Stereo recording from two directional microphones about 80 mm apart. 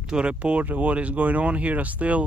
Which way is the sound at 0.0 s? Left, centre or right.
Centre.